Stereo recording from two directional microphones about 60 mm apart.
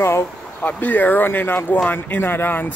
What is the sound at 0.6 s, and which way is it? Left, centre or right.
Speech, left.